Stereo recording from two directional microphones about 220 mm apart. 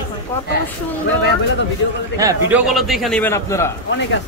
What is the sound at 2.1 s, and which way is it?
Speech, 15° right (ahead or behind).